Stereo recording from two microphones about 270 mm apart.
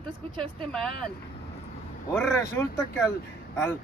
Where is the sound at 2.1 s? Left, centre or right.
Centre.